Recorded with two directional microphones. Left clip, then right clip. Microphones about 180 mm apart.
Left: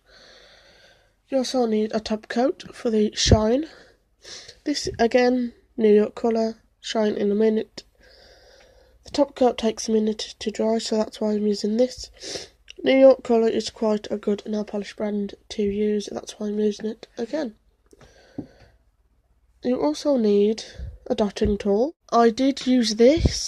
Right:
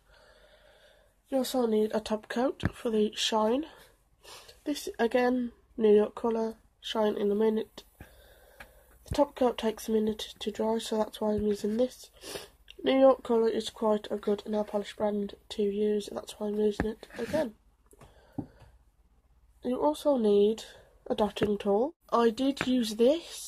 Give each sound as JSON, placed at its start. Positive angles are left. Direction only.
{"t": 1.3, "sound": "speech", "side_deg": 55}
{"t": 9.2, "sound": "speech", "side_deg": 40}
{"t": 19.6, "sound": "speech", "side_deg": 45}
{"t": 22.1, "sound": "speech", "side_deg": 55}